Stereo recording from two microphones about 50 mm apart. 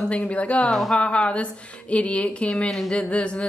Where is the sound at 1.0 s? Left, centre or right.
Left.